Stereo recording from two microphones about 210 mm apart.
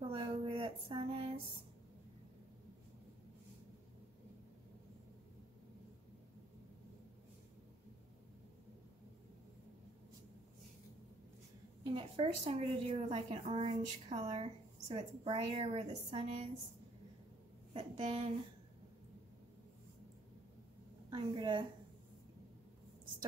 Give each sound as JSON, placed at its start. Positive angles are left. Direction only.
{"t": 0.1, "sound": "a sound", "side_deg": -25}
{"t": 11.8, "sound": "a woman's voice", "side_deg": -25}
{"t": 17.7, "sound": "a woman's voice", "side_deg": -30}
{"t": 21.1, "sound": "a woman's voice", "side_deg": -20}